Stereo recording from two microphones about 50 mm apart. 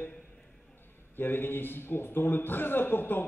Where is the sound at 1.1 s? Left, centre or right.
Left.